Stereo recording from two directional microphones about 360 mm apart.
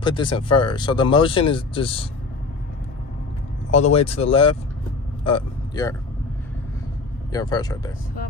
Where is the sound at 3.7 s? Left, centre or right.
Centre.